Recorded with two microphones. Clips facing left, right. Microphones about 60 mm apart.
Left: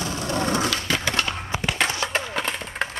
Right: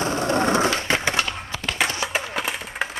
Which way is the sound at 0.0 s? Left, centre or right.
Right.